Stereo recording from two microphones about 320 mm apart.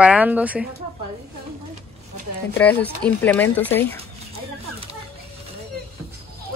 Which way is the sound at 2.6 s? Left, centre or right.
Centre.